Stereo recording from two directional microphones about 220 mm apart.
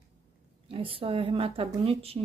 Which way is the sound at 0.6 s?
25° right (ahead or behind).